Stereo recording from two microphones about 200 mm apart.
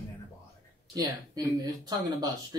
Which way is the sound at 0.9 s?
20° right (ahead or behind).